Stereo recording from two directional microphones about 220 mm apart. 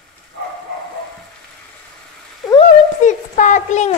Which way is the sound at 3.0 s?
35° left (ahead or behind).